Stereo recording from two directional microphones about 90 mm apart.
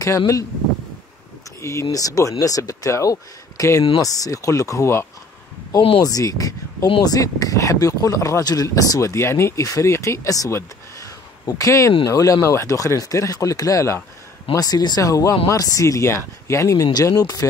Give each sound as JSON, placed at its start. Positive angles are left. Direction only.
{"t": 1.6, "sound": "speech", "side_deg": 35}
{"t": 5.9, "sound": "speech", "side_deg": 40}